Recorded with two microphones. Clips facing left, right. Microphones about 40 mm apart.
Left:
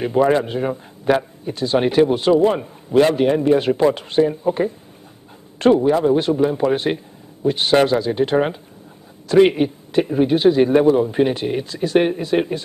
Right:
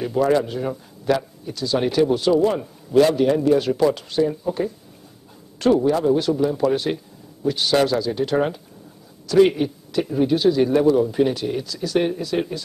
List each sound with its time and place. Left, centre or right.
0.0 s a man's voice: left